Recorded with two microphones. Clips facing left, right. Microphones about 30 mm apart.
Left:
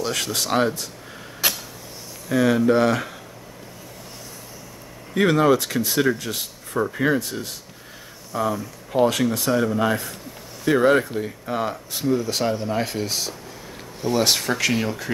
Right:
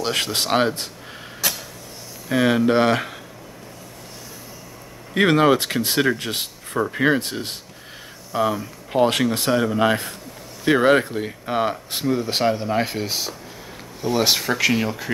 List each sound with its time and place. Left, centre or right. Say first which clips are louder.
0.0 s speech: right 2 dB; right
2.3 s speech: even; right
5.1 s speech: right 1 dB; right
8.3 s speech: right 3 dB; right
9.6 s speech: right 2 dB; right
12.4 s speech: right 3 dB; centre